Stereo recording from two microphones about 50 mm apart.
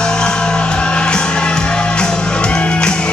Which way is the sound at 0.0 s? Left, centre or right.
Centre.